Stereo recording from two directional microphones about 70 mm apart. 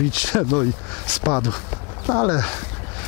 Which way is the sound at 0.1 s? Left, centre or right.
Centre.